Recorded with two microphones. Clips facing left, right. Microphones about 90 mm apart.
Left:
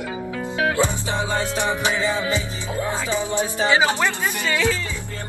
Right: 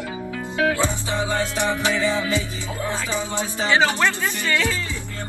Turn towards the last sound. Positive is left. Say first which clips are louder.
# left 1 dB
turn(degrees=15)  # may be behind; listen again after turning